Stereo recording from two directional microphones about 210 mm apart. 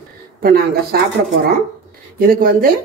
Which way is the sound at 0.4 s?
45° right (ahead or behind).